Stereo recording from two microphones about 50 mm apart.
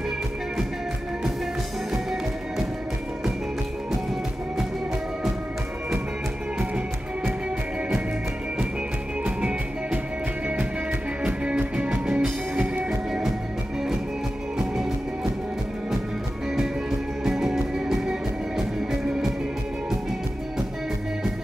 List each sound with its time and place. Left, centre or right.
9.2 s music: right
11.2 s music: right
17.2 s music: centre